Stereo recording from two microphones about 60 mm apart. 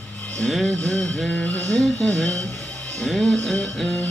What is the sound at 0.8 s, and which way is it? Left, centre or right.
Music, left.